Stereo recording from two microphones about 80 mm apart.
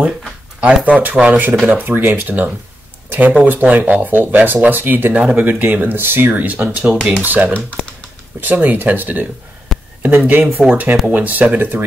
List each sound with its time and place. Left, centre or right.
1.2 s speech: centre
7.5 s speech: centre
8.4 s speech: right
9.7 s a sound: centre
10.0 s speech: right